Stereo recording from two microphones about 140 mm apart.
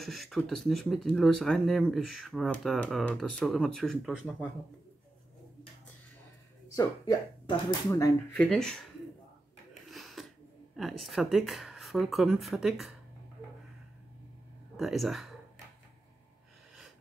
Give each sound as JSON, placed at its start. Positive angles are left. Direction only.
{"t": 0.0, "sound": "speech", "side_deg": 0}
{"t": 6.7, "sound": "speech", "side_deg": 30}
{"t": 7.9, "sound": "speech", "side_deg": 20}
{"t": 8.4, "sound": "speech", "side_deg": 5}
{"t": 9.8, "sound": "a sound", "side_deg": 0}
{"t": 10.8, "sound": "speech", "side_deg": 0}
{"t": 14.8, "sound": "speech", "side_deg": 0}